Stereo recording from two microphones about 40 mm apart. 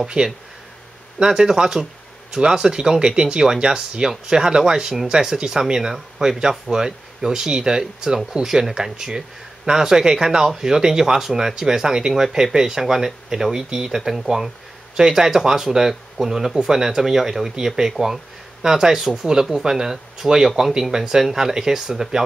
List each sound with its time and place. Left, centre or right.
0.2 s speech: right
1.2 s speech: centre